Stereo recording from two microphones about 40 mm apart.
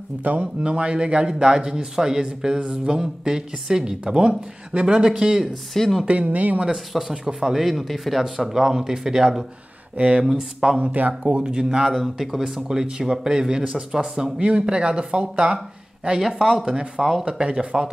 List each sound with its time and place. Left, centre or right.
0.2 s speech: right
0.7 s speech: right
5.4 s speech: centre
6.0 s speech: right
6.9 s speech: centre
9.9 s speech: right
10.3 s speech: centre
10.8 s speech: right
11.4 s speech: centre
11.9 s speech: centre
14.4 s speech: right
16.2 s speech: centre
16.6 s speech: right